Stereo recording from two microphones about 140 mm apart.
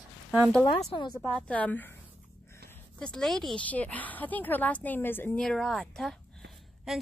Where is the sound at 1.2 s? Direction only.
5° left (ahead or behind).